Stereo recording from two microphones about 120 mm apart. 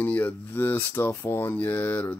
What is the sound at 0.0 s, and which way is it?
Speech, 15° left (ahead or behind).